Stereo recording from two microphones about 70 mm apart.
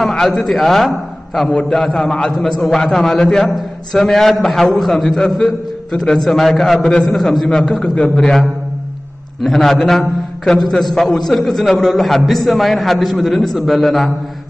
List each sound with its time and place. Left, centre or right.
0.0 s a man's voice: centre
1.5 s a man's voice: centre
7.8 s a man's voice: centre
9.4 s a man's voice: centre